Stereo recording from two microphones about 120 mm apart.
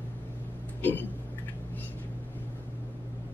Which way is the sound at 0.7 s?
15° left (ahead or behind).